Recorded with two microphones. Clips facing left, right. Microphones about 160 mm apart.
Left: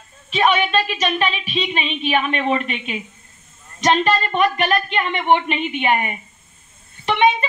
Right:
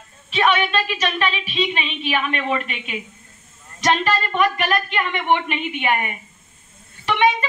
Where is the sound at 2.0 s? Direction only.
25° left (ahead or behind).